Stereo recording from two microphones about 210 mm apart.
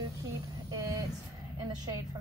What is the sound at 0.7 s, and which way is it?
Vehicle, 15° right (ahead or behind).